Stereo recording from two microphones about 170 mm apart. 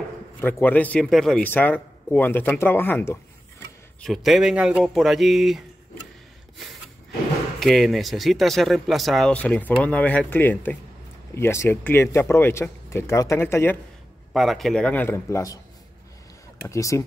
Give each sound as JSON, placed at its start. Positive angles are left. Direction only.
{"t": 0.4, "sound": "speech", "side_deg": 10}
{"t": 4.0, "sound": "speech", "side_deg": 0}
{"t": 7.6, "sound": "speech", "side_deg": 0}
{"t": 14.3, "sound": "speech", "side_deg": 0}
{"t": 16.6, "sound": "speech", "side_deg": 15}